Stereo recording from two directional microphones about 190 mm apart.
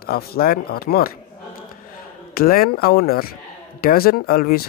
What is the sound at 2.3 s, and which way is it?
Speech, 50° left (ahead or behind).